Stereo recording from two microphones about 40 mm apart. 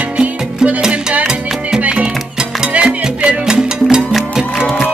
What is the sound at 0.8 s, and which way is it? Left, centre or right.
Music, right.